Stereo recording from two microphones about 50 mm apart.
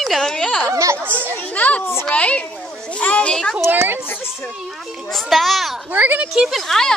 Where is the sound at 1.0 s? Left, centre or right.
Right.